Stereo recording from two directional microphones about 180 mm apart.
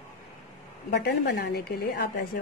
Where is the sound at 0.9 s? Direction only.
65° left (ahead or behind).